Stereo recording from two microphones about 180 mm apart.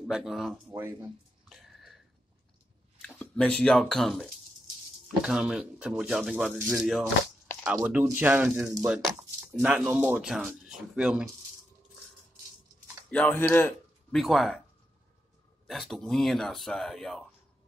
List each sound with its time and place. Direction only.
0.1 s speech: centre (ahead or behind)
0.7 s speech: 15° right (ahead or behind)
1.5 s wheeze: centre (ahead or behind)
3.0 s speech: 5° left (ahead or behind)
13.1 s speech: 10° left (ahead or behind)
14.1 s speech: centre (ahead or behind)
15.6 s speech: centre (ahead or behind)